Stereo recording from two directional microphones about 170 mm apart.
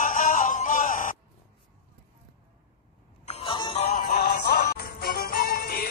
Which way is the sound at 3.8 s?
50° left (ahead or behind).